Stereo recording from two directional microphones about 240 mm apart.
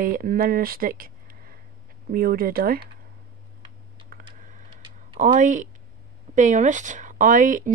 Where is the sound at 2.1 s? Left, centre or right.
Right.